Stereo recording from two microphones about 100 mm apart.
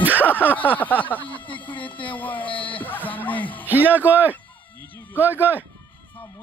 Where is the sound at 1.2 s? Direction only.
55° left (ahead or behind).